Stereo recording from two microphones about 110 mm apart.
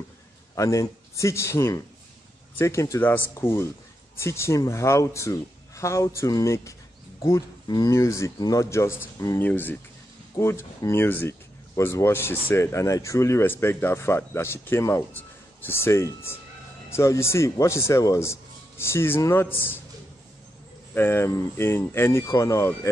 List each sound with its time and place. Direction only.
0.6 s speech: 30° left (ahead or behind)
7.6 s speech: 40° left (ahead or behind)
7.9 s speech: 25° left (ahead or behind)
15.1 s a sound: 20° left (ahead or behind)
16.3 s speech: 20° left (ahead or behind)
20.9 s speech: 20° left (ahead or behind)